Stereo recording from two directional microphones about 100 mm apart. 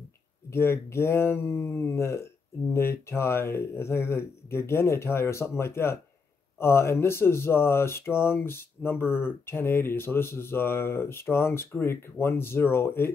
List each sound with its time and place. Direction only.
0.5 s speech: 25° left (ahead or behind)